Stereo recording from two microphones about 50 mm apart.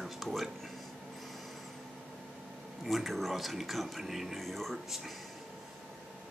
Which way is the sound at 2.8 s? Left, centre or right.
Centre.